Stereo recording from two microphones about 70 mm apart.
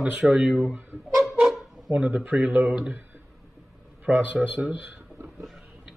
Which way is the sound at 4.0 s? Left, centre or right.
Right.